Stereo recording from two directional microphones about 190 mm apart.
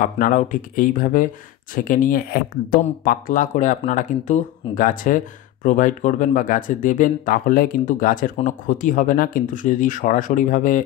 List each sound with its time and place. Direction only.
0.0 s speech: 45° left (ahead or behind)